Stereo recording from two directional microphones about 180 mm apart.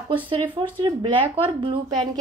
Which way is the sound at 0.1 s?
25° right (ahead or behind).